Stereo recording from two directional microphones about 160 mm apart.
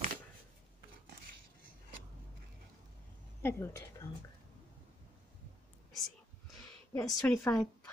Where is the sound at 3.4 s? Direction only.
15° left (ahead or behind).